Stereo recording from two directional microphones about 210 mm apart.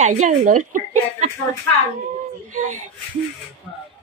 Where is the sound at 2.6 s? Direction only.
40° right (ahead or behind).